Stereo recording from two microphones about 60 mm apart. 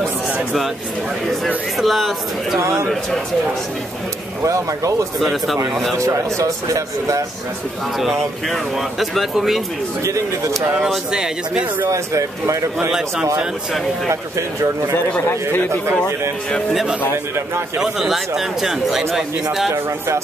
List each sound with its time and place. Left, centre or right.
1.8 s speech: centre
2.6 s a man's voice: right
4.4 s speech: right
5.2 s speech: centre
5.9 s speech: right
8.0 s speech: centre
10.0 s speech: right
11.1 s speech: centre
11.9 s speech: right
17.8 s speech: centre